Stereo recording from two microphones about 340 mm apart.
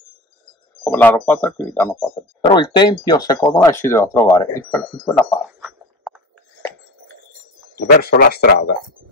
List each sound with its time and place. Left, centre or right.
0.8 s speech: centre
5.6 s a sound: centre
7.7 s speech: left